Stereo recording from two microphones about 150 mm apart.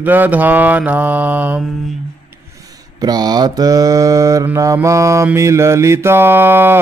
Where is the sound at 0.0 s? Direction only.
10° right (ahead or behind).